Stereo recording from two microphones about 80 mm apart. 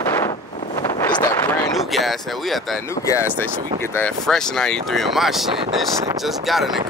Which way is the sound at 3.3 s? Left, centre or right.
Left.